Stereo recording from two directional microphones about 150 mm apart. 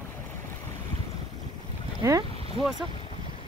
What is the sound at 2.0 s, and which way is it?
Speech, 25° right (ahead or behind).